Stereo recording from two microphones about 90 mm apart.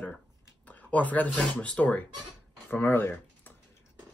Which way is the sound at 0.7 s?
20° left (ahead or behind).